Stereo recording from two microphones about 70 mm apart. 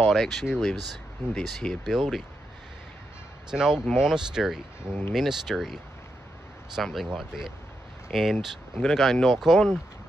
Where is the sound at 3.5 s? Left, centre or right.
Centre.